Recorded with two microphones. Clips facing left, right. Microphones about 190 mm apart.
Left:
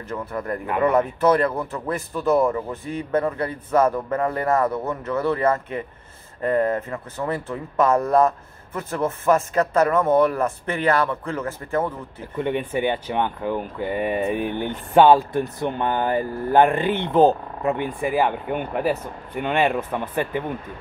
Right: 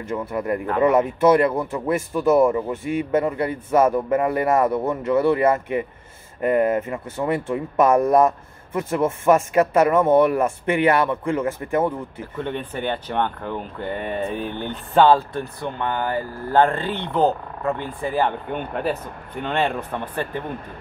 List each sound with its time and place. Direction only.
0.0 s speech: 10° right (ahead or behind)
12.4 s speech: 15° left (ahead or behind)